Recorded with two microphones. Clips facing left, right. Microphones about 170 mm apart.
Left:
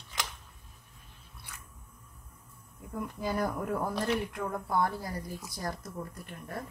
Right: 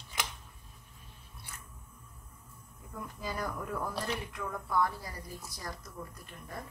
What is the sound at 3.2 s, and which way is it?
A woman's voice, 55° left (ahead or behind).